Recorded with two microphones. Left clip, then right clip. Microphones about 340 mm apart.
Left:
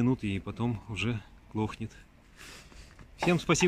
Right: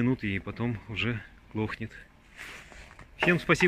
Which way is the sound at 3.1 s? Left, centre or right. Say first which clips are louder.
Right 3 dB; centre.